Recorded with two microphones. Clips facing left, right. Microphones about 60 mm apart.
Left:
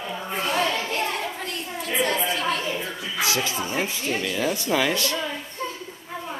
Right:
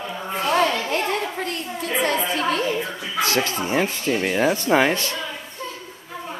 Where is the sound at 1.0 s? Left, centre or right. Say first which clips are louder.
Right 3 dB; right.